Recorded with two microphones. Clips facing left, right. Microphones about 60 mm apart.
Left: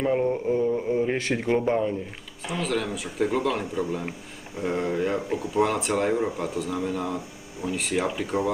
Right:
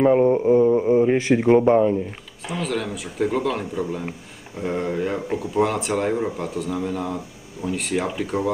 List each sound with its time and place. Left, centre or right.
0.0 s mantra: centre
2.4 s speech: centre